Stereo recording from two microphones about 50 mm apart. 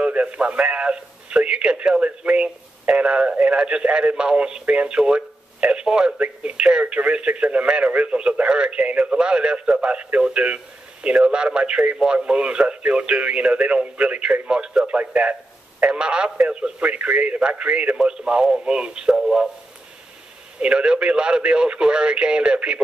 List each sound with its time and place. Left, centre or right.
0.0 s speech: right
20.6 s speech: centre